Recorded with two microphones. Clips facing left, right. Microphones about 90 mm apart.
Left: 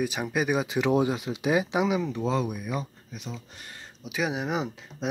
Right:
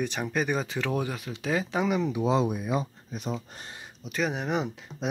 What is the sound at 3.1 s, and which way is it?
Speech, 40° right (ahead or behind).